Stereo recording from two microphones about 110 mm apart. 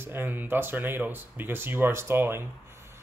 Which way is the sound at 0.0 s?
20° right (ahead or behind).